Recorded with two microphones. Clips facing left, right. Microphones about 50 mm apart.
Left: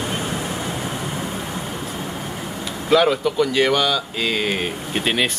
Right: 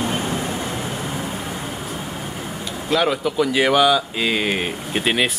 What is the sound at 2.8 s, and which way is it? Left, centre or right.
Speech, centre.